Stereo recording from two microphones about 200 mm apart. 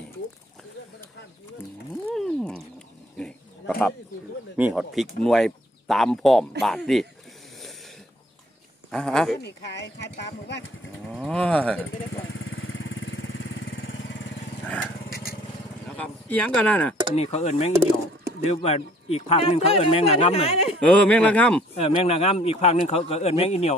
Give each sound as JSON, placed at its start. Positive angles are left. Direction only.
{"t": 2.1, "sound": "cat", "side_deg": 5}
{"t": 3.2, "sound": "a sound", "side_deg": 5}
{"t": 4.6, "sound": "speech", "side_deg": -5}
{"t": 8.9, "sound": "speech", "side_deg": 0}
{"t": 9.4, "sound": "speech", "side_deg": 60}
{"t": 11.1, "sound": "speech", "side_deg": 5}
{"t": 12.4, "sound": "vehicle", "side_deg": 80}
{"t": 16.0, "sound": "speech", "side_deg": 5}
{"t": 17.1, "sound": "speech", "side_deg": 30}
{"t": 20.8, "sound": "speech", "side_deg": 5}
{"t": 21.7, "sound": "speech", "side_deg": 30}